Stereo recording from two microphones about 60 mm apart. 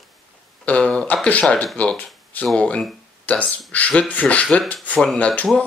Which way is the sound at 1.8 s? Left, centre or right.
Left.